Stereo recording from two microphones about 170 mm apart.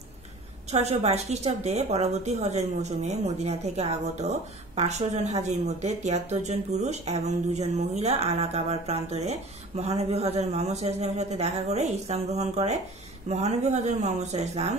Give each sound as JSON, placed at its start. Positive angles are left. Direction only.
{"t": 0.7, "sound": "a woman's voice", "side_deg": -40}